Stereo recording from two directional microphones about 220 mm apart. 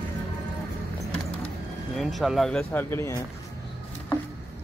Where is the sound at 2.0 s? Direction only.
Centre (ahead or behind).